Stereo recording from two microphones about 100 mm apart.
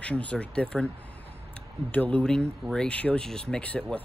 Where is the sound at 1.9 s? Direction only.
15° left (ahead or behind).